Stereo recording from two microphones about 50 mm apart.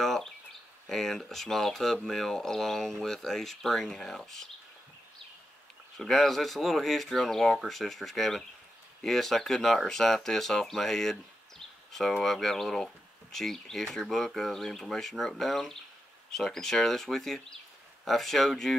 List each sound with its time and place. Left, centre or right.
0.0 s speech: centre
5.9 s speech: centre